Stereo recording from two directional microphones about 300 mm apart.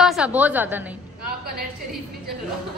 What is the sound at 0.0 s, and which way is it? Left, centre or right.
Speech, centre.